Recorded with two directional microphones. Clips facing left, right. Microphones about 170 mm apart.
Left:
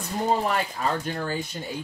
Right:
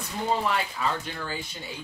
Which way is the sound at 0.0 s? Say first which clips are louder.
Left 3 dB; 45° left (ahead or behind).